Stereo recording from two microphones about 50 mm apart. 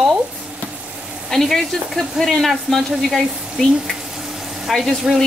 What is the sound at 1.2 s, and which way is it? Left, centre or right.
Speech, centre.